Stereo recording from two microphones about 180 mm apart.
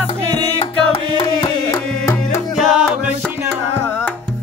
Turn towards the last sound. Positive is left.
turn(degrees=10)  # may be behind; listen again after turning